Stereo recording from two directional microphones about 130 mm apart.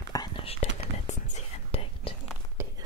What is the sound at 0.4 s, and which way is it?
Whispering, 50° left (ahead or behind).